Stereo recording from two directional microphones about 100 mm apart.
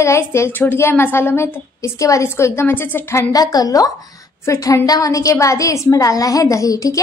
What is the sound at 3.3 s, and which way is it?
A woman's voice, 40° left (ahead or behind).